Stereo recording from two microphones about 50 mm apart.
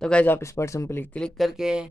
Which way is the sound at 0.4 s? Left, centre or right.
Left.